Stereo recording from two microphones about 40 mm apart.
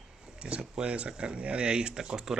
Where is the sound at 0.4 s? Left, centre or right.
Right.